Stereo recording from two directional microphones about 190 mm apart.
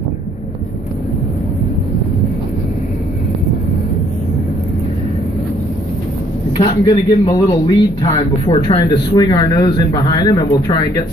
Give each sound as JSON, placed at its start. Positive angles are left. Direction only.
{"t": 6.6, "sound": "a man's voice", "side_deg": 30}